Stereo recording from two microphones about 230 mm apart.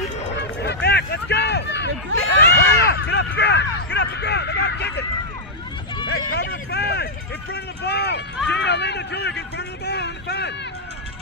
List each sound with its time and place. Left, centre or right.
0.3 s run: left
2.3 s speech: left
6.0 s a sound: left
7.5 s speech: left